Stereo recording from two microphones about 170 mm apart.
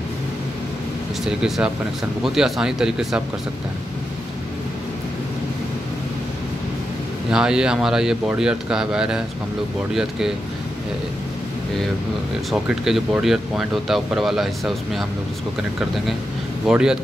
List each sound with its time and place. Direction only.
1.2 s speech: 5° right (ahead or behind)
7.2 s speech: 5° right (ahead or behind)
12.4 s speech: centre (ahead or behind)
16.6 s speech: 5° right (ahead or behind)